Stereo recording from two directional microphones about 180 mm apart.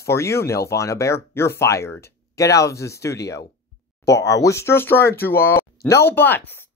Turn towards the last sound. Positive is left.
turn(degrees=10)  # may be behind; listen again after turning